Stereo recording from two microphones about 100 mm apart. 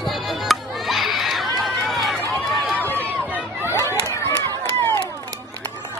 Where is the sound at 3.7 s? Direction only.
25° left (ahead or behind).